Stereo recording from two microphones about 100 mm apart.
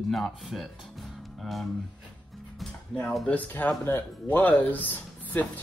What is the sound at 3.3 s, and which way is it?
Speech, 15° left (ahead or behind).